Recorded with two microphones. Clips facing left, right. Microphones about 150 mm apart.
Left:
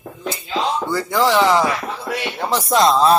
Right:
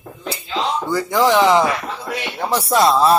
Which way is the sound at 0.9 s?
15° right (ahead or behind).